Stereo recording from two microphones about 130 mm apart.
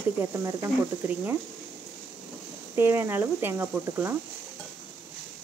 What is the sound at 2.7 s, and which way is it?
A woman's voice, 20° right (ahead or behind).